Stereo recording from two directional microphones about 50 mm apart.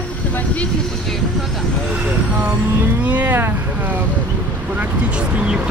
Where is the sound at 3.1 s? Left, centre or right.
Right.